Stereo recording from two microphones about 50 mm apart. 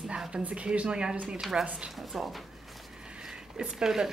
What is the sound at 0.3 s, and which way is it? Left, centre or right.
Speech, right.